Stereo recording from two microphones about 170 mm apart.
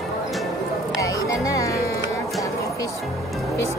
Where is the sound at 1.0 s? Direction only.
20° left (ahead or behind).